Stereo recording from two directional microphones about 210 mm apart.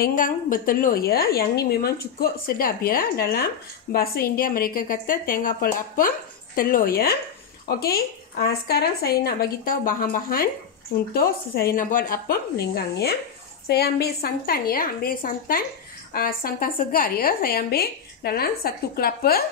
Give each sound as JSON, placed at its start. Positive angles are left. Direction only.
{"t": 0.0, "sound": "a woman's voice", "side_deg": 40}